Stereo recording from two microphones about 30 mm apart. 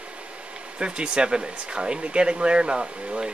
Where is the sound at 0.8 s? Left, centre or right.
Right.